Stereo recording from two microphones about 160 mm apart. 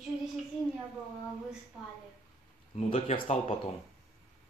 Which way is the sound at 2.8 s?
40° left (ahead or behind).